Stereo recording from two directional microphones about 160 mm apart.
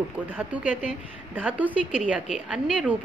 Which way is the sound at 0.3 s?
10° right (ahead or behind).